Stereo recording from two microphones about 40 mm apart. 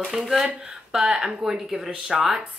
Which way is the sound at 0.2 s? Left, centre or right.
Centre.